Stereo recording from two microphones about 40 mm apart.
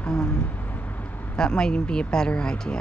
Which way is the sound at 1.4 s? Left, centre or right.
Left.